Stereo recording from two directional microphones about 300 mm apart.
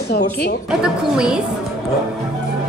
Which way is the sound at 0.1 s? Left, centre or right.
Left.